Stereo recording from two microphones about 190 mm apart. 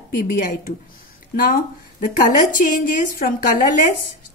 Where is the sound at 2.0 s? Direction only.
40° left (ahead or behind).